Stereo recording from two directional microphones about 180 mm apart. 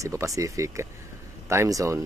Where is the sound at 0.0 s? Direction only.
15° right (ahead or behind).